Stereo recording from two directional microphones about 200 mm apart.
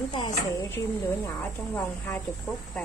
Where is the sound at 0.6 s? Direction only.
10° left (ahead or behind).